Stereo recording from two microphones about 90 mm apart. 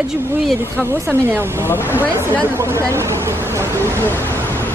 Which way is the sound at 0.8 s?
25° right (ahead or behind).